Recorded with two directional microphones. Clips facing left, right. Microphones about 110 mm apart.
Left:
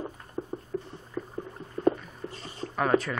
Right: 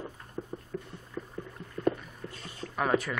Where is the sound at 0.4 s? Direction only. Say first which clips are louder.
Left 4 dB; 30° left (ahead or behind).